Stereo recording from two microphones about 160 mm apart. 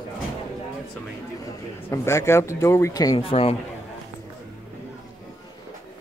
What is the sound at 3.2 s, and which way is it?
Speech, 35° left (ahead or behind).